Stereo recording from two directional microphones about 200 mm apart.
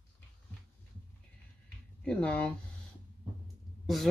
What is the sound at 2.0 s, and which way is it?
Speech, 5° left (ahead or behind).